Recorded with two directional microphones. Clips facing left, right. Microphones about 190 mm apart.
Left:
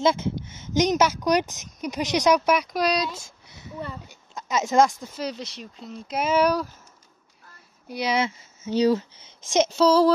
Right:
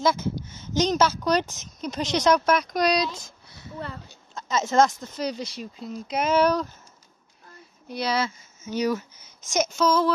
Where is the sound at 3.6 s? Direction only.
15° left (ahead or behind).